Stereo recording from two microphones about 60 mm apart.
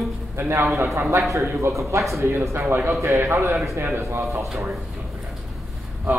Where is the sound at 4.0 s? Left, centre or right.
Right.